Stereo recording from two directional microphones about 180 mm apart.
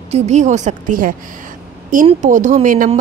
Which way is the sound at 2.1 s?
45° right (ahead or behind).